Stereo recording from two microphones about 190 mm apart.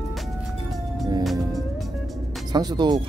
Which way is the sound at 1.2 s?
Centre (ahead or behind).